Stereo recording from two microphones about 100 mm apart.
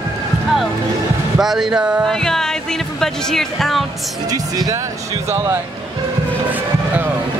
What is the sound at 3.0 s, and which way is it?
Speech, 5° left (ahead or behind).